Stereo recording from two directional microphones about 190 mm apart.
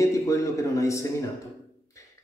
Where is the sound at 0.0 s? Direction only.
15° left (ahead or behind).